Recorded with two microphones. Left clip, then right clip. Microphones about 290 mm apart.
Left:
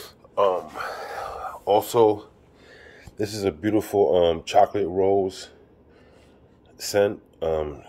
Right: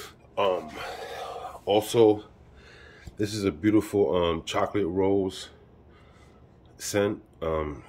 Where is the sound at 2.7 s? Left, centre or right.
Centre.